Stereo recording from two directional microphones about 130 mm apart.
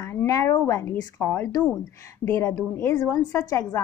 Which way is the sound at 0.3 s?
25° left (ahead or behind).